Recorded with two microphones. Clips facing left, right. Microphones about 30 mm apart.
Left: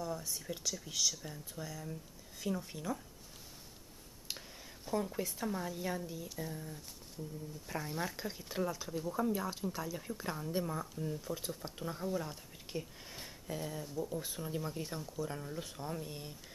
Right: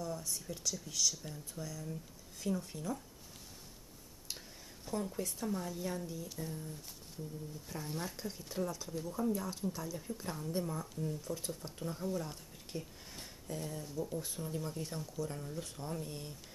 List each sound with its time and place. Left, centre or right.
0.0 s a sound: centre
0.7 s speech: centre
4.8 s speech: centre
6.5 s speech: centre
7.8 s speech: centre
8.2 s speech: centre